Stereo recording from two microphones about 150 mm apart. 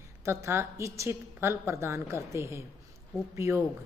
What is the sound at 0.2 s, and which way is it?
A woman's voice, 20° right (ahead or behind).